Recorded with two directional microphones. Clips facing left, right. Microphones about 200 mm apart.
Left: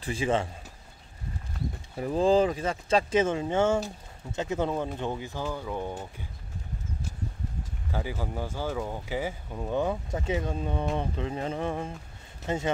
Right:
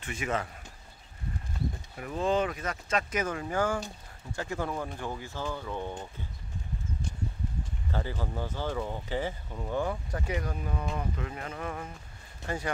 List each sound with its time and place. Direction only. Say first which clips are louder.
0.0 s speech: left 6 dB; 30° left (ahead or behind)
2.0 s speech: left 6 dB; 30° left (ahead or behind); by 6.0 s 10° left (ahead or behind)
7.9 s speech: left 2 dB; 10° left (ahead or behind)